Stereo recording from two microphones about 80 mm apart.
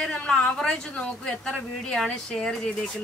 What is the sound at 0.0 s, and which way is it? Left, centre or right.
A man's voice, centre.